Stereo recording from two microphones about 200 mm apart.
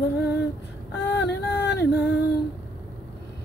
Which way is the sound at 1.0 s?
60° left (ahead or behind).